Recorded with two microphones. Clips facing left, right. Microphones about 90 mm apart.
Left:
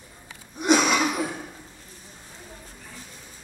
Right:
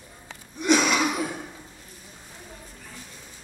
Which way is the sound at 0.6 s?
15° left (ahead or behind).